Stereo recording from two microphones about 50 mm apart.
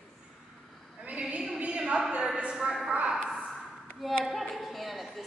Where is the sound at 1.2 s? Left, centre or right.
Centre.